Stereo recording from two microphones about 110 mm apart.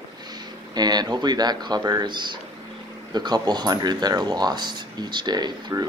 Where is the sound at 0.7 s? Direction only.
40° right (ahead or behind).